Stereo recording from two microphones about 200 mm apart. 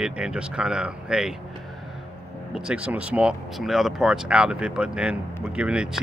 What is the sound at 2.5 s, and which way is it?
Speech, 5° right (ahead or behind).